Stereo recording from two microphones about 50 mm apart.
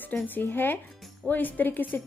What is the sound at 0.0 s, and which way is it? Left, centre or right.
Speech, left.